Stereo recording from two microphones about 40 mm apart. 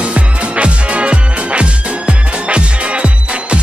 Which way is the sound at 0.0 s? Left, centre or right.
Right.